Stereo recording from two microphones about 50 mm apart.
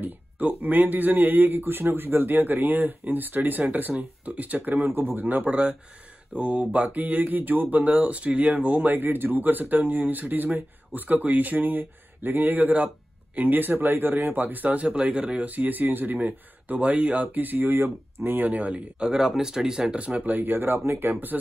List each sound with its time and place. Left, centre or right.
0.0 s speech: right
8.9 s speech: right
18.9 s speech: centre
20.2 s speech: right